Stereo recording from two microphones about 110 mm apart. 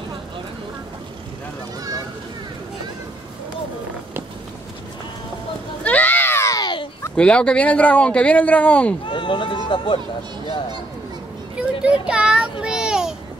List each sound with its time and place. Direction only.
5.9 s a sound: 15° left (ahead or behind)
7.2 s speech: 10° left (ahead or behind)
9.1 s speech: 45° left (ahead or behind)
11.5 s child singing: 10° right (ahead or behind)